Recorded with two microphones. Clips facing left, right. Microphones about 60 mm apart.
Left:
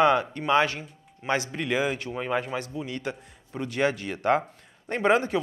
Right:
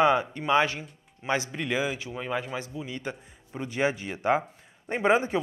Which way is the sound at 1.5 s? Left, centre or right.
Centre.